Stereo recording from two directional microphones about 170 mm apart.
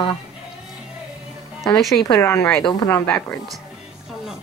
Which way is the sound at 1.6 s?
Centre (ahead or behind).